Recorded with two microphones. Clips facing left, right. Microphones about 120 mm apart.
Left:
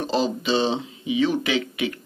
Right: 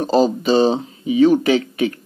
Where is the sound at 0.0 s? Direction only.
40° right (ahead or behind).